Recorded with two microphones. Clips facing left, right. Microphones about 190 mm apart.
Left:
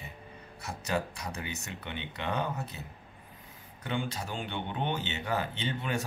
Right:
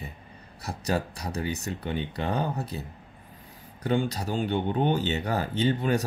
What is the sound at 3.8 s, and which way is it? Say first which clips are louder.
Speech: right 8 dB; 35° right (ahead or behind).